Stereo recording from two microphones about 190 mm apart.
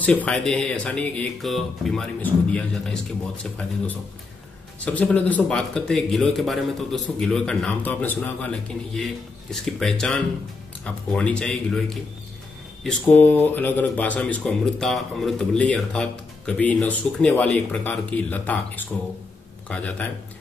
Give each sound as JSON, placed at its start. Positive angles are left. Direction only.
{"t": 0.0, "sound": "speech", "side_deg": 5}
{"t": 4.7, "sound": "speech", "side_deg": 5}